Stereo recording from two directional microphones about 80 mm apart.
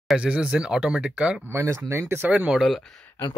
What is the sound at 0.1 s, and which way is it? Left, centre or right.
Speech, centre.